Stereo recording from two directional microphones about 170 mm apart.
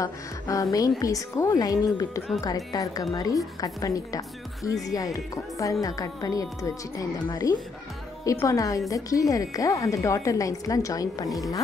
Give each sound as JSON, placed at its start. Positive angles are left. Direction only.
{"t": 0.0, "sound": "speech", "side_deg": 20}